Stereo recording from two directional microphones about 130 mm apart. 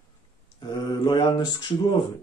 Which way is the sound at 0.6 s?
35° left (ahead or behind).